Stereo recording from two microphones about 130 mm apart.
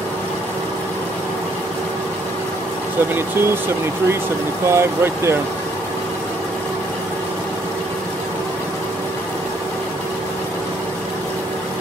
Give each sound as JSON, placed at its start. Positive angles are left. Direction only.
{"t": 3.2, "sound": "speech", "side_deg": -20}